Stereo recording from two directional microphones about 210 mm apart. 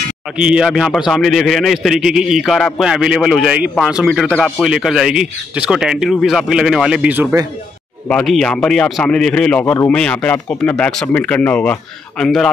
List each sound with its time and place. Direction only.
0.4 s a man's voice: 5° right (ahead or behind)
8.1 s a man's voice: 5° left (ahead or behind)